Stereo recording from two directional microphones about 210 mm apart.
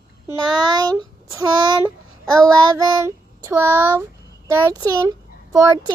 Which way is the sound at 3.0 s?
15° right (ahead or behind).